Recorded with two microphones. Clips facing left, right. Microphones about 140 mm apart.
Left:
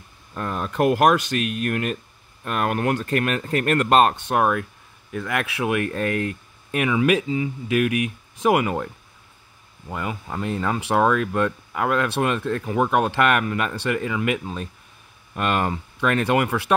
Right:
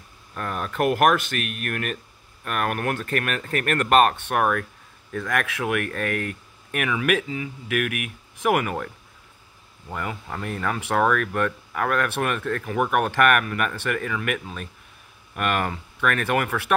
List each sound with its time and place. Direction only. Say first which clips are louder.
0.3 s speech: left 2 dB; 25° left (ahead or behind)
5.1 s speech: even; 5° left (ahead or behind)